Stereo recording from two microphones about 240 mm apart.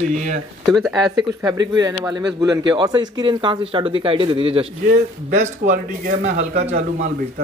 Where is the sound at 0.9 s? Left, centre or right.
Centre.